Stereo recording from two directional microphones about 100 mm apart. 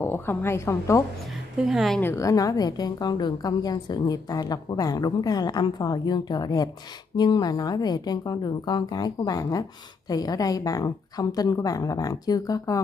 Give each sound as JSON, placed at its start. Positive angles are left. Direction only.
{"t": 0.0, "sound": "a woman's voice", "side_deg": 25}
{"t": 1.7, "sound": "speech", "side_deg": 0}
{"t": 2.1, "sound": "a woman's voice", "side_deg": 35}